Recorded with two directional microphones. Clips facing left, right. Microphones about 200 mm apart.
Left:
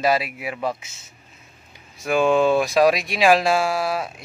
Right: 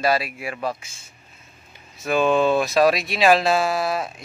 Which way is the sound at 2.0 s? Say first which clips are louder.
Left 1 dB; 10° left (ahead or behind).